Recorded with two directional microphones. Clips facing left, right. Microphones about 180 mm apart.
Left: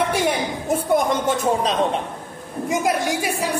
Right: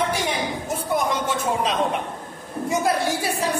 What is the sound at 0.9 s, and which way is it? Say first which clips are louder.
Speech: left 3 dB; 50° left (ahead or behind).